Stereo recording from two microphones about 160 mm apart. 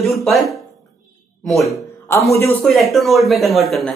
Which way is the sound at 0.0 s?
Centre (ahead or behind).